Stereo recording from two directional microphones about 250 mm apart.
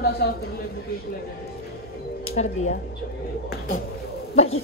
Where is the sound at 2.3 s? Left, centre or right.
Left.